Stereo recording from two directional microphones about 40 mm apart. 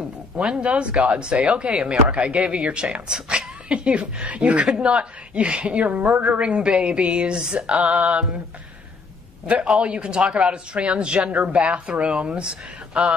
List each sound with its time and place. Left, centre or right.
0.4 s speech: right
3.6 s speech: right
5.9 s a woman's voice: right
6.4 s speech: right
9.5 s speech: right